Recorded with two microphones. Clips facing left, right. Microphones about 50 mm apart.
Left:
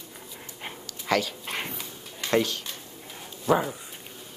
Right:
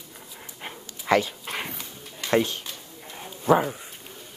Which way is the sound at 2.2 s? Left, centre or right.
Right.